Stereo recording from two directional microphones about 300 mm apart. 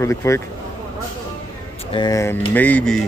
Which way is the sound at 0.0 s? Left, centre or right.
Centre.